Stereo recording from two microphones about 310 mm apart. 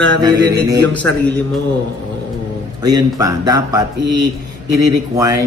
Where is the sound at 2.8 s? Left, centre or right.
Centre.